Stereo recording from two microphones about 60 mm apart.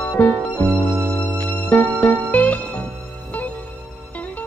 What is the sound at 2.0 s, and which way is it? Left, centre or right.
Music, left.